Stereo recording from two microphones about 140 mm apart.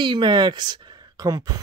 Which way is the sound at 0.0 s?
35° right (ahead or behind).